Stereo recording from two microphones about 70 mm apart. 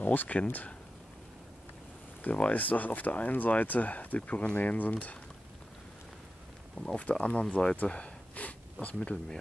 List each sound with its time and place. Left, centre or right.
0.0 s speech: left
2.2 s speech: centre
7.0 s speech: centre